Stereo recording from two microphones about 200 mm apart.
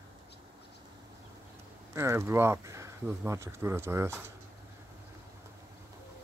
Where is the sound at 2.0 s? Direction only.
15° right (ahead or behind).